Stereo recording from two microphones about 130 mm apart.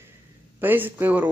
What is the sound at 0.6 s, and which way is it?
Speech, 15° right (ahead or behind).